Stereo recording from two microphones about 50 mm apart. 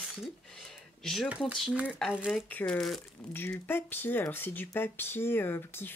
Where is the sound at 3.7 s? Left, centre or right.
Left.